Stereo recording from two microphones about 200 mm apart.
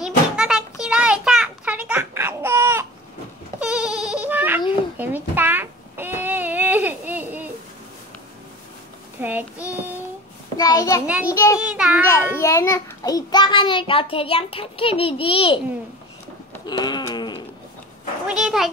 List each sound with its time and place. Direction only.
0.0 s music: 5° right (ahead or behind)
3.5 s sheep: 5° right (ahead or behind)
4.9 s a sound: 10° right (ahead or behind)
9.2 s child singing: 10° right (ahead or behind)
10.6 s child singing: 15° left (ahead or behind)
11.7 s a sound: 5° right (ahead or behind)
12.1 s a child's voice: 15° left (ahead or behind)
16.6 s a sound: 20° left (ahead or behind)
18.2 s a child's voice: 5° right (ahead or behind)